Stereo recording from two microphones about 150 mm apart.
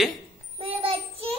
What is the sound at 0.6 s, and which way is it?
Child singing, 40° right (ahead or behind).